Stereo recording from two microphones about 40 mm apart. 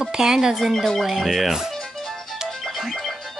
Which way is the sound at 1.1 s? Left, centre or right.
Centre.